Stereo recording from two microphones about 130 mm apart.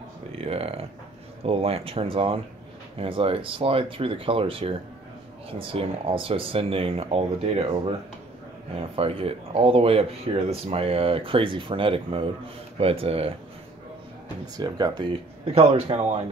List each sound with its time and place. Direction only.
0.3 s speech: 50° right (ahead or behind)
8.7 s speech: 45° right (ahead or behind)
14.6 s speech: 35° right (ahead or behind)